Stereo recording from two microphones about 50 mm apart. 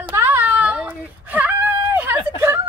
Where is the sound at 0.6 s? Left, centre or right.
Right.